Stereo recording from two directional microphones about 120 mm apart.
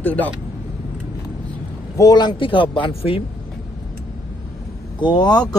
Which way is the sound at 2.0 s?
35° left (ahead or behind).